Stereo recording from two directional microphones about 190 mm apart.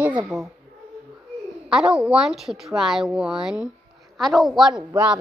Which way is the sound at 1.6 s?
Centre (ahead or behind).